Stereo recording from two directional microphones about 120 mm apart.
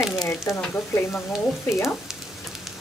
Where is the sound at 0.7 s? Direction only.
15° left (ahead or behind).